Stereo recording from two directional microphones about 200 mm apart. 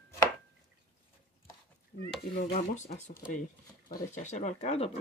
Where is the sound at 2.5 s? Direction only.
35° left (ahead or behind).